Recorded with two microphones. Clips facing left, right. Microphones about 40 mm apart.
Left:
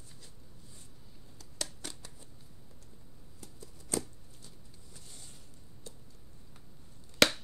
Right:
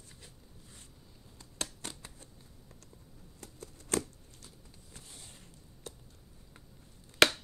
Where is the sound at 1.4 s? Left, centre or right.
Right.